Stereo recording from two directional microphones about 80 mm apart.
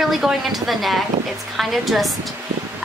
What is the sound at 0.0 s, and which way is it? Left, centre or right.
A woman's voice, centre.